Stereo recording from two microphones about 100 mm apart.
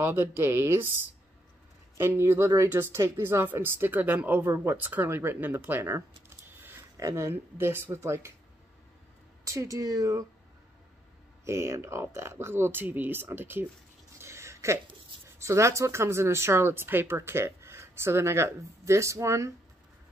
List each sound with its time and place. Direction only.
0.0 s speech: 25° right (ahead or behind)
2.0 s speech: 25° right (ahead or behind)
6.2 s a sound: 20° right (ahead or behind)
7.0 s speech: 30° right (ahead or behind)
9.4 s speech: 30° right (ahead or behind)
11.4 s speech: 30° right (ahead or behind)
14.2 s a sound: 25° right (ahead or behind)
15.2 s speech: 30° right (ahead or behind)